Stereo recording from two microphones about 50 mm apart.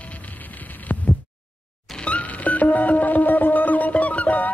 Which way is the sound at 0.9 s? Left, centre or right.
Left.